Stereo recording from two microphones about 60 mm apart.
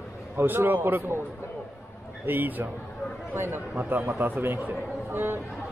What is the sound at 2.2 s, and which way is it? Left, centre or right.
A man's voice, right.